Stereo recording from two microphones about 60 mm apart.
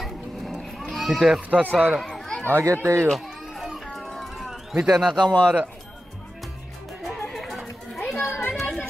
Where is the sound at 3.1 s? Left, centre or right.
Centre.